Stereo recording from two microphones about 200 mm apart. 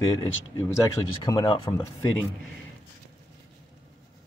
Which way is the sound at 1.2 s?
25° left (ahead or behind).